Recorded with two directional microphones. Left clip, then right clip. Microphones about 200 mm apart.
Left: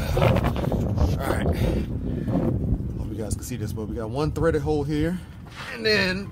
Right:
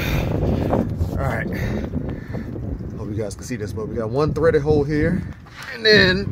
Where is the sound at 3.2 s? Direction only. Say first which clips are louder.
Right 6 dB; 25° right (ahead or behind).